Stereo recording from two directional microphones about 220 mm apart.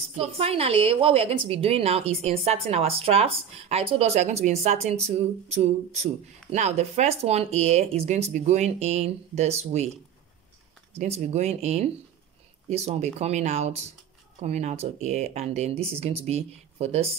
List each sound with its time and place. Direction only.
0.1 s a woman's voice: 25° right (ahead or behind)
11.0 s a woman's voice: 30° right (ahead or behind)